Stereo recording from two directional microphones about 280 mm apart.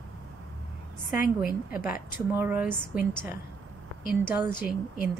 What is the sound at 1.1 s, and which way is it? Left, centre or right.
Speech, left.